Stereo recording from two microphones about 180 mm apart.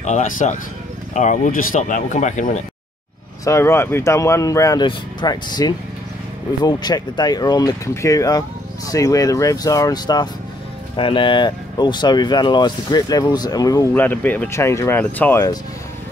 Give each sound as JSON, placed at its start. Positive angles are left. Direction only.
{"t": 0.0, "sound": "speech", "side_deg": 45}
{"t": 3.4, "sound": "speech", "side_deg": 15}